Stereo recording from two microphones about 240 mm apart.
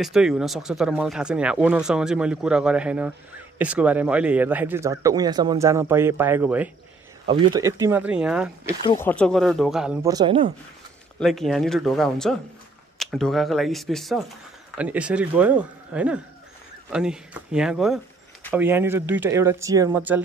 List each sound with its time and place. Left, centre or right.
0.0 s speech: centre
7.2 s speech: centre
8.8 s speech: centre
10.0 s speech: centre
11.1 s speech: centre